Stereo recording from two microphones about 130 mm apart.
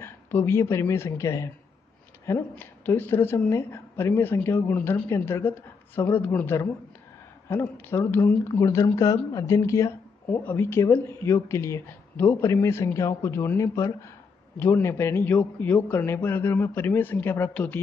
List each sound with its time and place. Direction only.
0.0 s a woman's voice: 20° left (ahead or behind)